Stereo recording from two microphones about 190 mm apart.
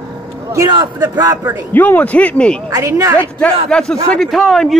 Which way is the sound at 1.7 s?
10° left (ahead or behind).